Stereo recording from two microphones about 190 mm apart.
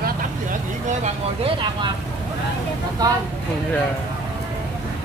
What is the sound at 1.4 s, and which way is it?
Speech, 25° right (ahead or behind).